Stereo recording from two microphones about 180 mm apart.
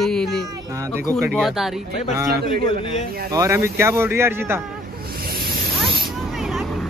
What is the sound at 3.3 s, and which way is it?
Speech, 15° right (ahead or behind).